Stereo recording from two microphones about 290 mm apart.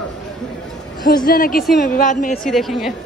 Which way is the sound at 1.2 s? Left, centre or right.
Left.